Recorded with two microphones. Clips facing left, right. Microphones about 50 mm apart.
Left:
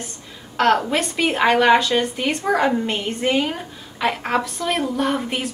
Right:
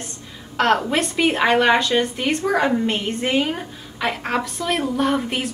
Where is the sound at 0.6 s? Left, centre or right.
Centre.